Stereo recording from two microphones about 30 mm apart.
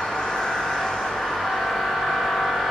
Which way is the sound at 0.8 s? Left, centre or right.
Left.